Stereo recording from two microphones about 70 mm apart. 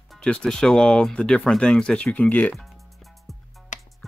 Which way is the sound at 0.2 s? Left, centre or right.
Centre.